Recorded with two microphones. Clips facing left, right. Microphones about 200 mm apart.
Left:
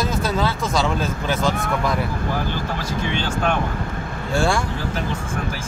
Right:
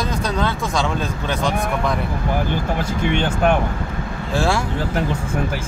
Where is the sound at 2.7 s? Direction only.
55° right (ahead or behind).